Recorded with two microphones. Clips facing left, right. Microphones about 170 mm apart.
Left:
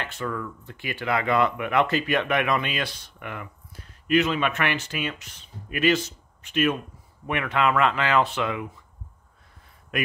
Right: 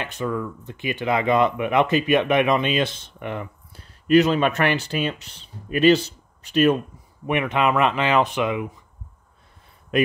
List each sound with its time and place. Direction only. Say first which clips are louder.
0.0 s speech: right 4 dB; 15° right (ahead or behind); by 6.8 s 35° right (ahead or behind)
7.2 s speech: right 3 dB; 20° right (ahead or behind)